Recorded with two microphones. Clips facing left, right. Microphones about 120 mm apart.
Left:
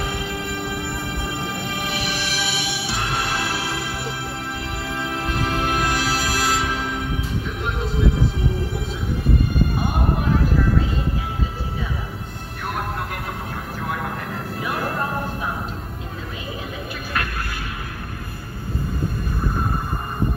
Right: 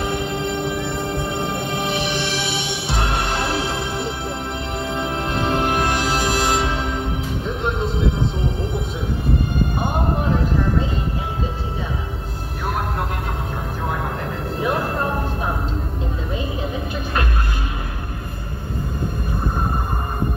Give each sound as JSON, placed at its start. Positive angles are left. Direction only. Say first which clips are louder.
{"t": 0.1, "sound": "music", "louder": "right 5 dB", "side_deg": -25}
{"t": 9.8, "sound": "music", "louder": "right 1 dB", "side_deg": -25}